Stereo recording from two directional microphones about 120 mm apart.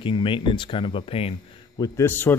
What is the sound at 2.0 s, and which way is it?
Speech, 15° left (ahead or behind).